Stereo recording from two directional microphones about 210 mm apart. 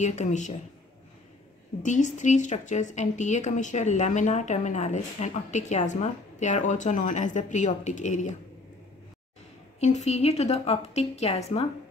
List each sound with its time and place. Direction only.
0.0 s speech: 35° left (ahead or behind)
1.8 s speech: 35° left (ahead or behind)
9.8 s speech: 30° left (ahead or behind)